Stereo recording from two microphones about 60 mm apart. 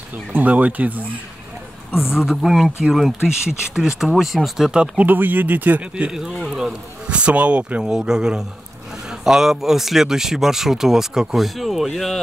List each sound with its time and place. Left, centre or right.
0.3 s speech: right
2.0 s speech: centre
4.9 s speech: right
6.1 s speech: centre
7.1 s speech: right; by 12.2 s centre